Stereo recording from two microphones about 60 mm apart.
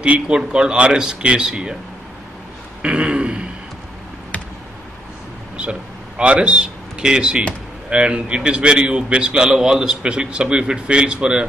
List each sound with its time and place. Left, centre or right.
0.0 s a man's voice: centre
2.8 s throat clearing: centre
5.6 s a man's voice: centre